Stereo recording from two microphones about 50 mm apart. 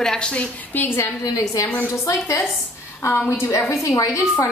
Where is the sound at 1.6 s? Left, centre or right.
Left.